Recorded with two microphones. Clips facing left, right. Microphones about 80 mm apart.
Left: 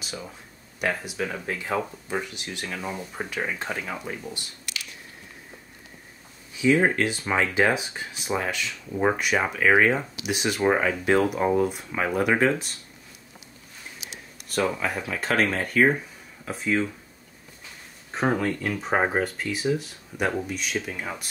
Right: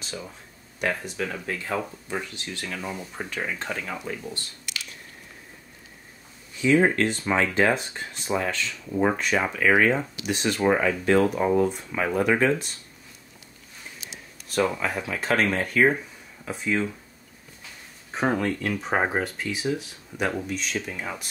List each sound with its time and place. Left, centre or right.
0.0 s a sound: centre
0.7 s speech: centre
6.5 s speech: centre
14.5 s speech: centre
18.1 s speech: centre